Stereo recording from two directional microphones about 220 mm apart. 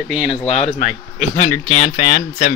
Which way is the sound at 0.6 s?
25° left (ahead or behind).